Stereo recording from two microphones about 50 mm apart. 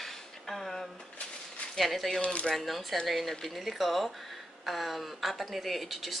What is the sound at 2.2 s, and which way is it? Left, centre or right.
Speech, left.